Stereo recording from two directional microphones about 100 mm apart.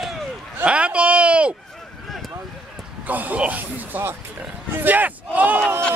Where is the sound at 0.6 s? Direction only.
10° right (ahead or behind).